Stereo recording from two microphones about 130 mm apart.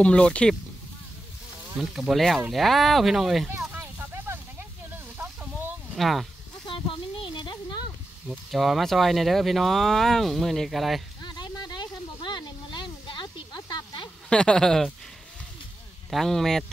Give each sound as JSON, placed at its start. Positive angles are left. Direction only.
{"t": 0.0, "sound": "speech", "side_deg": 10}
{"t": 1.8, "sound": "speech", "side_deg": 0}
{"t": 3.7, "sound": "snake", "side_deg": -15}
{"t": 5.9, "sound": "speech", "side_deg": 0}
{"t": 6.6, "sound": "a sound", "side_deg": 40}
{"t": 8.3, "sound": "speech", "side_deg": 0}
{"t": 11.2, "sound": "a sound", "side_deg": 35}
{"t": 14.3, "sound": "speech", "side_deg": 5}
{"t": 16.1, "sound": "speech", "side_deg": 0}